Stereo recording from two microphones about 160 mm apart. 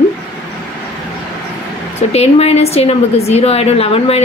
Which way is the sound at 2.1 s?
40° left (ahead or behind).